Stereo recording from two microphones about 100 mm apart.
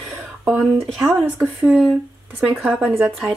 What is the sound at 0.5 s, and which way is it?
Speech, 25° right (ahead or behind).